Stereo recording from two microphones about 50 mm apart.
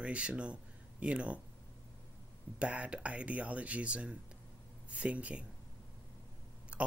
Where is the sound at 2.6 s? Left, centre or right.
Right.